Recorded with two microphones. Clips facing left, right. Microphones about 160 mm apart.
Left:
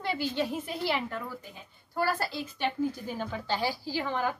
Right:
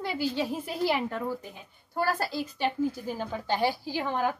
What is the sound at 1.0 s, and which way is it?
Speech, 30° right (ahead or behind).